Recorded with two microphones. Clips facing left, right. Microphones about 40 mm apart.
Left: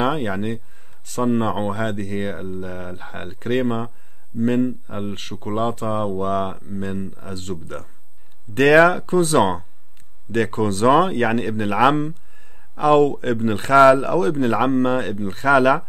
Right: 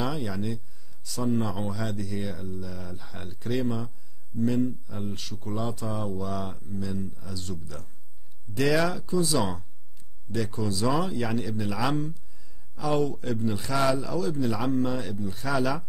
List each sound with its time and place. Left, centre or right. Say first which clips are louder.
0.0 s speech: left 9 dB; left